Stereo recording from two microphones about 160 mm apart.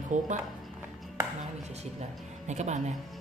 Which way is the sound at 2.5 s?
45° right (ahead or behind).